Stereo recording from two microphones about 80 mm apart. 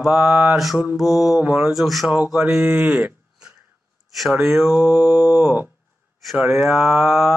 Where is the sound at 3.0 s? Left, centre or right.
Centre.